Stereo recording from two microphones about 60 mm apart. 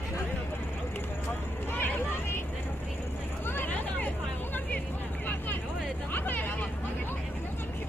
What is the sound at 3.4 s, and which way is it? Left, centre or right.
Vehicle, left.